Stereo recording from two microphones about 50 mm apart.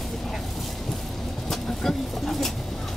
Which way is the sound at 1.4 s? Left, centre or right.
Centre.